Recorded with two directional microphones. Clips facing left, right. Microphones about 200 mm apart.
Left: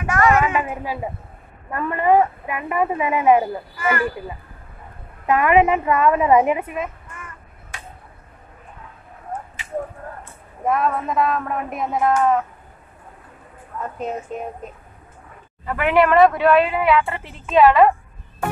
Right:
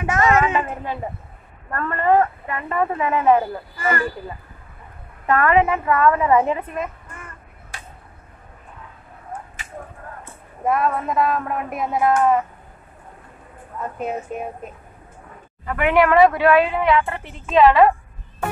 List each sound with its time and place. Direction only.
0.0 s a sound: 20° right (ahead or behind)
0.6 s speech: 10° left (ahead or behind)
3.8 s speech: 35° right (ahead or behind)
5.2 s speech: 15° left (ahead or behind)
10.6 s speech: centre (ahead or behind)
13.9 s speech: 5° right (ahead or behind)